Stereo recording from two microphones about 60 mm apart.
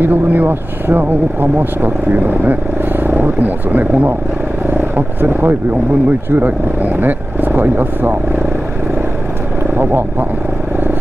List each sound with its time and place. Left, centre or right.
0.0 s speech: right